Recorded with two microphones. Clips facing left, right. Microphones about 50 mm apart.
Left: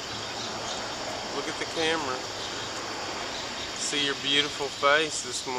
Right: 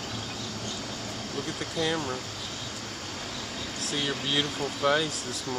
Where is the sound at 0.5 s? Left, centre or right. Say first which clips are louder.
Left 2 dB; left.